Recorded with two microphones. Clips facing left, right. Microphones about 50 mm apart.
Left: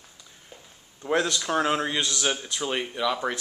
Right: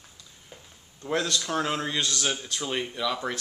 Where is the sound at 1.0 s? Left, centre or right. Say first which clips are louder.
Left 3 dB; centre.